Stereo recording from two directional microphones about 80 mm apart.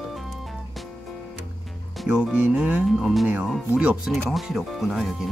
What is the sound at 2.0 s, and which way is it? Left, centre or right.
Music, centre.